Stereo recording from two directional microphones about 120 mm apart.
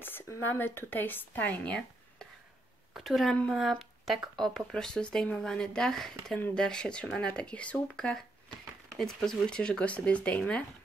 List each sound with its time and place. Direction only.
0.0 s speech: 15° left (ahead or behind)
2.9 s a woman's voice: centre (ahead or behind)